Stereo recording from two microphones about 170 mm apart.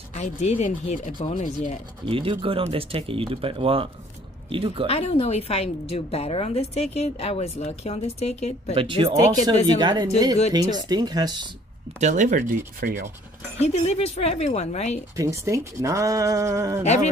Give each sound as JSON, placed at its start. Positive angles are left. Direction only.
{"t": 0.1, "sound": "speech", "side_deg": 40}
{"t": 2.0, "sound": "speech", "side_deg": -30}
{"t": 4.8, "sound": "a woman's voice", "side_deg": 35}
{"t": 8.7, "sound": "speech", "side_deg": -30}
{"t": 12.0, "sound": "speech", "side_deg": -45}
{"t": 13.6, "sound": "a woman's voice", "side_deg": 40}
{"t": 15.1, "sound": "speech", "side_deg": -20}